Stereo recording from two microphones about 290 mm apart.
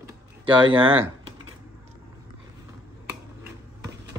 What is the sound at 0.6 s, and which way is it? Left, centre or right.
Speech, centre.